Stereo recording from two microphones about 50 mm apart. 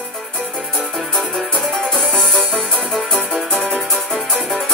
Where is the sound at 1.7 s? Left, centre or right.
Centre.